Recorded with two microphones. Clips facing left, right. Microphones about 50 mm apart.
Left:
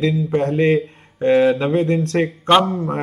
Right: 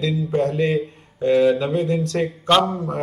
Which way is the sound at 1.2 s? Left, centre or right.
Left.